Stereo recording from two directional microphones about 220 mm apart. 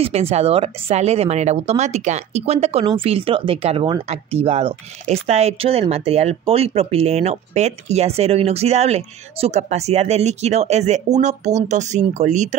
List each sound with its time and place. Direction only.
0.0 s speech: 25° right (ahead or behind)